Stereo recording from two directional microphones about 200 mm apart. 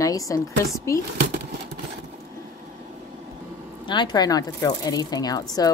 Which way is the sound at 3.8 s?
20° left (ahead or behind).